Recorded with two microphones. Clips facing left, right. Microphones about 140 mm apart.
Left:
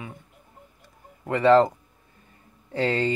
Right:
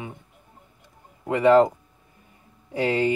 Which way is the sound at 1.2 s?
15° right (ahead or behind).